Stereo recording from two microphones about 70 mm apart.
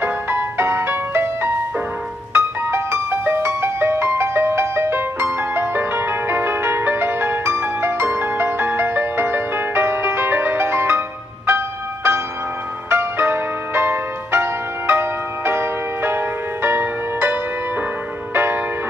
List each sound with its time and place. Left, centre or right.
0.0 s music: right